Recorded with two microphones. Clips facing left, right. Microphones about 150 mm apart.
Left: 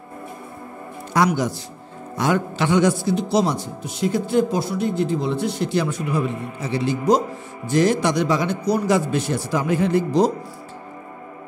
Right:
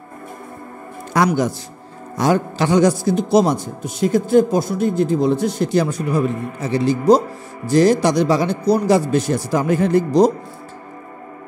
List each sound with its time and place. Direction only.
1.1 s a man's voice: 50° right (ahead or behind)
2.1 s a man's voice: 35° right (ahead or behind)